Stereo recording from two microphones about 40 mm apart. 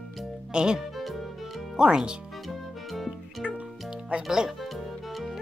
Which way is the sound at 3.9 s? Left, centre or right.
Right.